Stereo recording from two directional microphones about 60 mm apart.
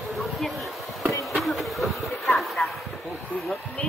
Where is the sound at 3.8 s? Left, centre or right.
Centre.